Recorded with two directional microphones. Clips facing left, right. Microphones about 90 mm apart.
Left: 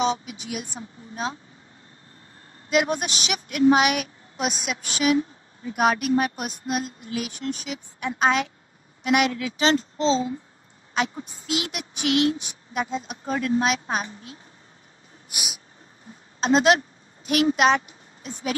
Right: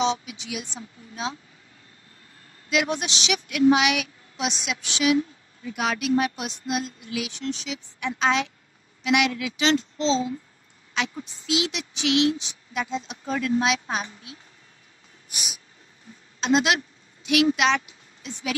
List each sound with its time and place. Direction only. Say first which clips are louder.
0.0 s speech: even; 45° left (ahead or behind)
2.7 s a child's voice: left 2 dB; 45° left (ahead or behind)
16.3 s speech: left 3 dB; 40° left (ahead or behind)